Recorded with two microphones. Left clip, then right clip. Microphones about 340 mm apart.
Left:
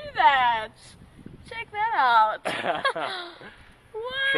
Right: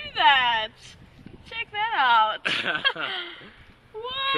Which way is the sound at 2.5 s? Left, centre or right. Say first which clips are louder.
Right 1 dB; centre.